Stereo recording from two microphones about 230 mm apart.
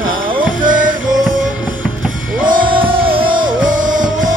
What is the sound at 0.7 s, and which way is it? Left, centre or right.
Music, right.